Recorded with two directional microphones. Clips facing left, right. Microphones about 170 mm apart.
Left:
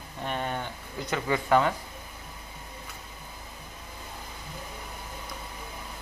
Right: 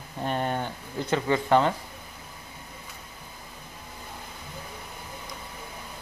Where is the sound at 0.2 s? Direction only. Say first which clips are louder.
Right 4 dB; 35° right (ahead or behind).